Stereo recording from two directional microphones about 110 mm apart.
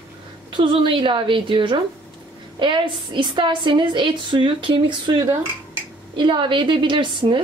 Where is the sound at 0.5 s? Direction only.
50° right (ahead or behind).